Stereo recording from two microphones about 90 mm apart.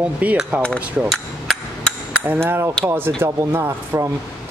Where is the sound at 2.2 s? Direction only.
20° right (ahead or behind).